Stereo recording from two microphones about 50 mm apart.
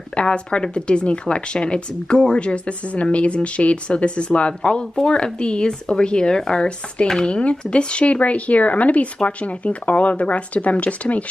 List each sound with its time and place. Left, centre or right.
0.1 s a woman's voice: left